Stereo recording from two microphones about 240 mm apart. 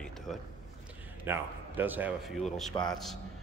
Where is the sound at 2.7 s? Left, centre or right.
Centre.